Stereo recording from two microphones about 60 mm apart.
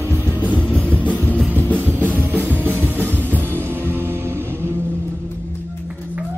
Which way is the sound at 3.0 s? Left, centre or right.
Right.